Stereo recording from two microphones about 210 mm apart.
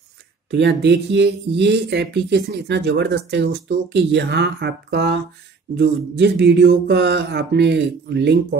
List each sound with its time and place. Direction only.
0.5 s speech: 55° right (ahead or behind)